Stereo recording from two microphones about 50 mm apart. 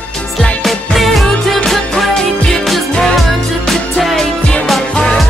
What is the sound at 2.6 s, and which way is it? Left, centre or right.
Music, centre.